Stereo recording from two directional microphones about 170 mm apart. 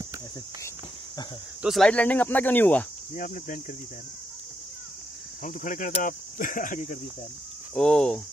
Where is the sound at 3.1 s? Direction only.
50° left (ahead or behind).